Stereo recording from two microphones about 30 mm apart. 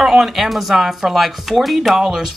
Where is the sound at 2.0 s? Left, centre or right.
Centre.